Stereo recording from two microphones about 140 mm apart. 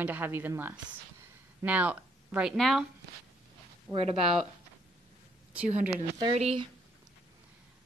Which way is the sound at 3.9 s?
45° right (ahead or behind).